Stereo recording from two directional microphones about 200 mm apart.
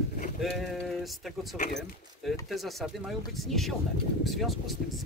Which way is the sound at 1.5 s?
40° left (ahead or behind).